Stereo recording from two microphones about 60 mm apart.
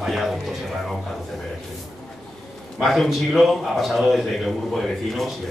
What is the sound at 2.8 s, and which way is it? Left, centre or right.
A man's voice, centre.